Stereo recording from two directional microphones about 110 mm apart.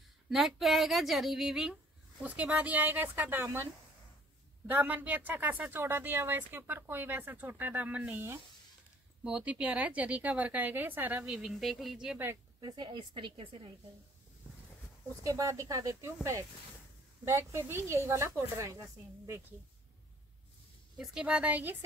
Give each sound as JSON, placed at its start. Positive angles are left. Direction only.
{"t": 0.3, "sound": "speech", "side_deg": 0}
{"t": 4.6, "sound": "speech", "side_deg": -15}
{"t": 11.2, "sound": "speech", "side_deg": -5}
{"t": 12.5, "sound": "a woman's voice", "side_deg": -40}
{"t": 15.2, "sound": "speech", "side_deg": -30}
{"t": 17.2, "sound": "speech", "side_deg": -25}
{"t": 21.0, "sound": "speech", "side_deg": -5}